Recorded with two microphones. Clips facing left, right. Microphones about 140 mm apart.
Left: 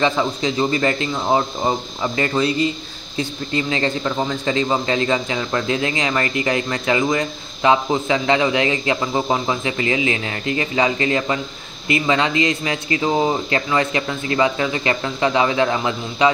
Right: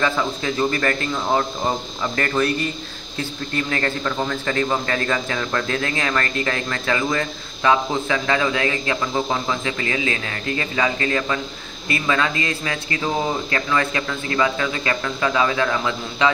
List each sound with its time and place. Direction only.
0.0 s a man's voice: 20° left (ahead or behind)